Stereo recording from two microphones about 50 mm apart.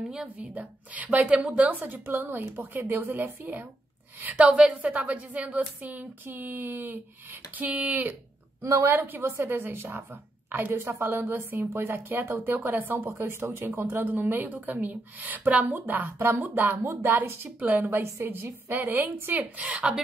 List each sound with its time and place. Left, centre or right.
0.4 s a woman's voice: right
1.6 s a woman's voice: right
8.6 s speech: right
8.9 s a woman's voice: right
13.2 s speech: right
14.0 s a woman's voice: right
16.8 s speech: right
17.6 s a woman's voice: right
18.2 s a woman's voice: right
19.5 s a woman's voice: right